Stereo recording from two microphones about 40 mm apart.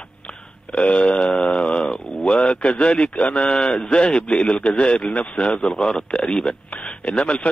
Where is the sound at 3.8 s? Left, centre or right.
Left.